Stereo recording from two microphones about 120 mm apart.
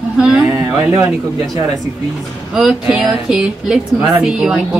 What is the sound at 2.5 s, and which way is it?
Speech, 5° right (ahead or behind).